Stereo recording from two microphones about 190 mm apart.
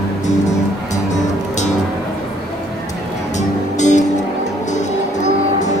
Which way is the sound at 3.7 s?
40° left (ahead or behind).